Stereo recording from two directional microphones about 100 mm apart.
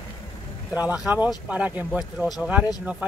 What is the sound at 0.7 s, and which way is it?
Speech, 15° right (ahead or behind).